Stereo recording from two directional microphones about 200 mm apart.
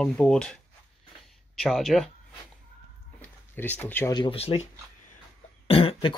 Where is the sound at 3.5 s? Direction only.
10° left (ahead or behind).